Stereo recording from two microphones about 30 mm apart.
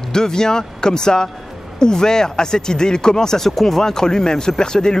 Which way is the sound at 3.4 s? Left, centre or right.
Centre.